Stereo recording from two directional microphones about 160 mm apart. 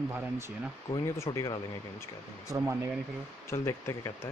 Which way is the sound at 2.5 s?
15° right (ahead or behind).